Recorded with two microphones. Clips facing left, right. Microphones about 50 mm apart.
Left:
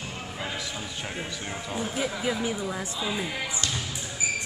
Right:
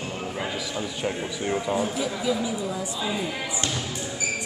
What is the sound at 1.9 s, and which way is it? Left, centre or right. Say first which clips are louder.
Speech: right 2 dB; left.